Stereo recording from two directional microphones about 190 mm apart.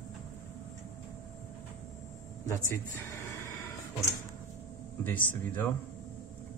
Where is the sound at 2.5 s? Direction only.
15° left (ahead or behind).